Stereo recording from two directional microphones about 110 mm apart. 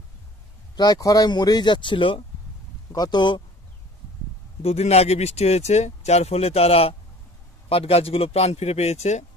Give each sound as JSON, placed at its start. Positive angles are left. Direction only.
{"t": 0.7, "sound": "speech", "side_deg": 35}
{"t": 2.9, "sound": "speech", "side_deg": 40}
{"t": 4.6, "sound": "speech", "side_deg": 70}